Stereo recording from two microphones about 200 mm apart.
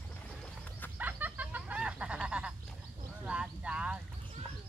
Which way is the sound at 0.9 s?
10° right (ahead or behind).